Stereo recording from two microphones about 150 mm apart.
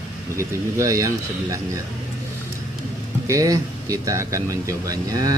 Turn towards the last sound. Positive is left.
turn(degrees=-25)  # may be behind; listen again after turning